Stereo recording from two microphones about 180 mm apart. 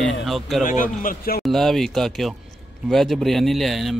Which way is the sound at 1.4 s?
Centre (ahead or behind).